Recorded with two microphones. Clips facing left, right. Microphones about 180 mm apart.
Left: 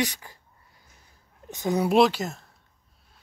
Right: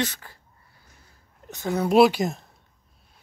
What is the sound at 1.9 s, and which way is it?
Speech, 10° right (ahead or behind).